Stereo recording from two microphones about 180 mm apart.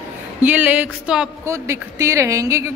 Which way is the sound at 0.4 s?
10° right (ahead or behind).